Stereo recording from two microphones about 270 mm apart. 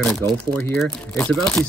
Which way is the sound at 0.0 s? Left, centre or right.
Centre.